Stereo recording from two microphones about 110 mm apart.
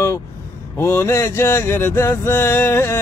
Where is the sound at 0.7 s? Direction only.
20° left (ahead or behind).